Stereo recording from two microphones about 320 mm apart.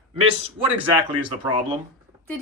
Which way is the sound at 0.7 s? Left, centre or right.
Centre.